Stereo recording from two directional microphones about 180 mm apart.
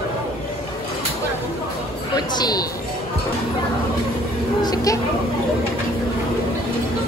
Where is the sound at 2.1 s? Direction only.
25° left (ahead or behind).